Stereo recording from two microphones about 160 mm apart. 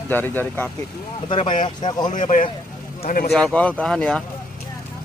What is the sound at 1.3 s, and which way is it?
Speech, 30° left (ahead or behind).